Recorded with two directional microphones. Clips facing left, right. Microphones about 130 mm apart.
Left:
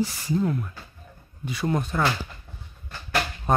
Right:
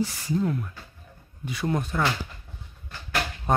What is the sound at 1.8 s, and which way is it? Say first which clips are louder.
Speech: left 1 dB; 30° left (ahead or behind).